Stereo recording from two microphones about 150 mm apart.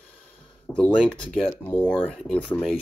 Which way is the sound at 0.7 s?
5° left (ahead or behind).